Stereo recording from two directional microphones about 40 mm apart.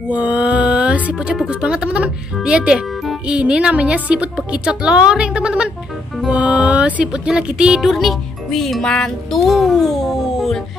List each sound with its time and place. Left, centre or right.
0.1 s mantra: right
1.5 s a woman's voice: right
6.3 s music: right
7.1 s a woman's voice: right
7.8 s speech: centre
8.8 s speech: centre
9.3 s a child's voice: centre